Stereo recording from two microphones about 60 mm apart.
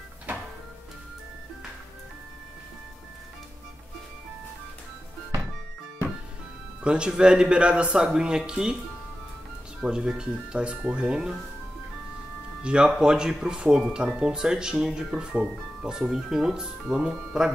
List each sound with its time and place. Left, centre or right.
0.3 s music: right
6.8 s speech: centre
9.8 s speech: centre
12.6 s speech: centre